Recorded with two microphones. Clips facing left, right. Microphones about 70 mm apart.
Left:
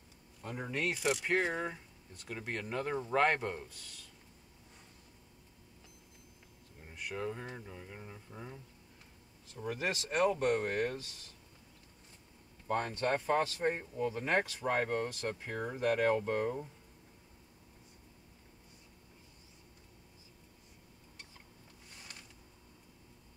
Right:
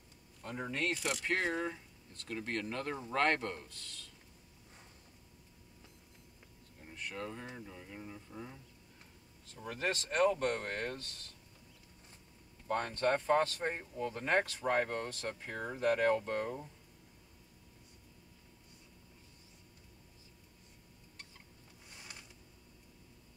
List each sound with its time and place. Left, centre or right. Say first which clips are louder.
0.4 s speech: left 1 dB; centre
6.8 s speech: left 3 dB; centre
12.6 s speech: even; centre